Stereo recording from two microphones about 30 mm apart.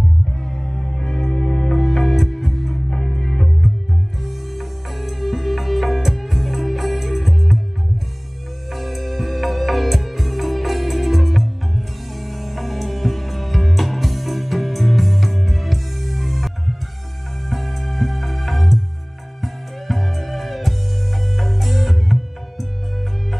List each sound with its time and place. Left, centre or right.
0.4 s music: left
1.8 s music: centre
4.2 s music: centre
8.7 s music: centre